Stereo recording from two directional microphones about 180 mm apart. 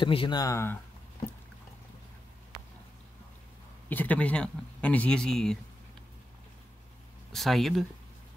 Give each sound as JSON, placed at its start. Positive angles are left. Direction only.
{"t": 0.0, "sound": "speech", "side_deg": 30}
{"t": 3.9, "sound": "speech", "side_deg": 10}
{"t": 7.3, "sound": "speech", "side_deg": 0}